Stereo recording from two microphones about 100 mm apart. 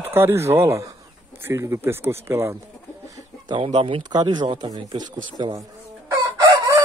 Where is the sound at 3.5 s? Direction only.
60° right (ahead or behind); by 5.7 s 40° right (ahead or behind).